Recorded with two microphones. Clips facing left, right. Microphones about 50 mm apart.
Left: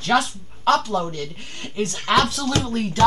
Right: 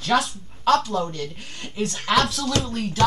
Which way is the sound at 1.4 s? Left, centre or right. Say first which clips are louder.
Left 2 dB; centre.